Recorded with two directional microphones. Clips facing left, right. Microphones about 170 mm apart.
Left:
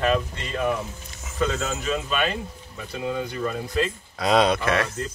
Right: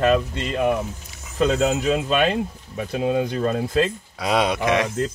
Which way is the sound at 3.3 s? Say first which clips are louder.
Right 6 dB; 90° right.